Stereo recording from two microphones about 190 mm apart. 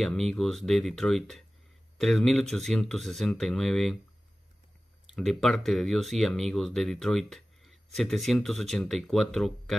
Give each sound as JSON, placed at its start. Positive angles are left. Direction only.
{"t": 0.0, "sound": "speech", "side_deg": 5}
{"t": 5.1, "sound": "speech", "side_deg": 0}